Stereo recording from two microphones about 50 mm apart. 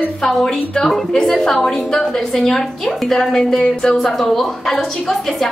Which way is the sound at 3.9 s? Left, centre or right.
Centre.